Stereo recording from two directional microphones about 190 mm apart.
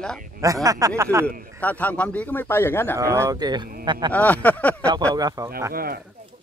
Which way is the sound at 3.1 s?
20° right (ahead or behind).